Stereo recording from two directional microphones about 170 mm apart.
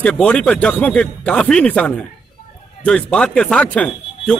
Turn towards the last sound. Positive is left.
turn(degrees=5)  # may be behind; listen again after turning